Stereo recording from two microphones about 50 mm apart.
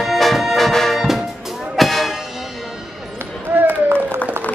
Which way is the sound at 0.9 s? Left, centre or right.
Centre.